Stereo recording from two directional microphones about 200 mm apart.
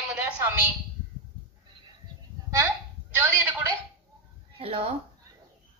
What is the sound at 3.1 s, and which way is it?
Speech, 10° right (ahead or behind).